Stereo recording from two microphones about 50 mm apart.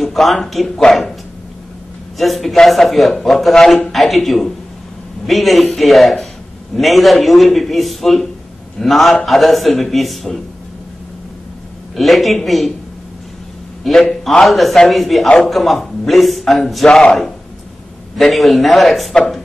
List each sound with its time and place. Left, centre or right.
0.0 s speech: centre
2.1 s a man's voice: centre
11.9 s a man's voice: centre
14.4 s a man's voice: centre